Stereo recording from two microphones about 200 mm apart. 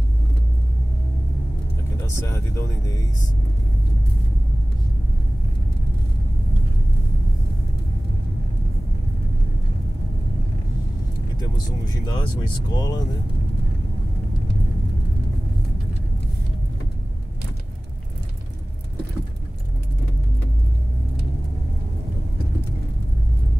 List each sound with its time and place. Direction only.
2.0 s speech: 15° left (ahead or behind)
11.3 s speech: 20° left (ahead or behind)